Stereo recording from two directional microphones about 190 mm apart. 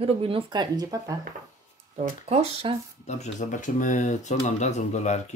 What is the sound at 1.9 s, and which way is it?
Speech, 35° right (ahead or behind).